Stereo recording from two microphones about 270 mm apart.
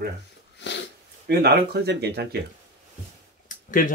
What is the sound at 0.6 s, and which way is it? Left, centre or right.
Dog, left.